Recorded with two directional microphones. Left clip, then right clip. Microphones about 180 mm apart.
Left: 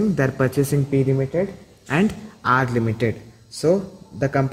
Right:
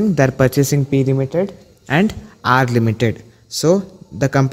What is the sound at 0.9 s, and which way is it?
Speech, 60° right (ahead or behind).